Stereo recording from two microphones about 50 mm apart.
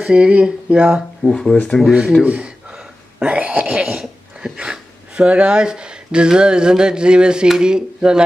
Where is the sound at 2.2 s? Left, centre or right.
Right.